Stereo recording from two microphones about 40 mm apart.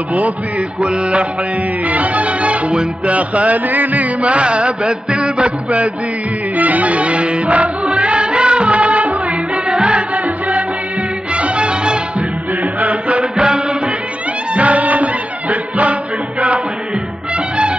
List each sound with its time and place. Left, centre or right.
0.7 s music: right
6.5 s music: right